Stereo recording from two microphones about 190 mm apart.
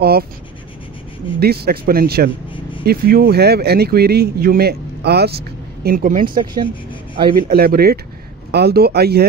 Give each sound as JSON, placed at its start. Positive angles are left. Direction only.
{"t": 0.0, "sound": "speech", "side_deg": -55}
{"t": 1.4, "sound": "speech", "side_deg": -55}
{"t": 5.9, "sound": "speech", "side_deg": -45}
{"t": 6.3, "sound": "speech", "side_deg": -20}
{"t": 7.3, "sound": "speech", "side_deg": -50}